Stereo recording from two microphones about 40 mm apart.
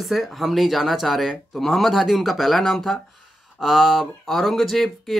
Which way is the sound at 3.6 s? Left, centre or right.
Centre.